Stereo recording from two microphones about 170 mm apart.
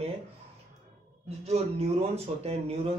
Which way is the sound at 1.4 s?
35° right (ahead or behind).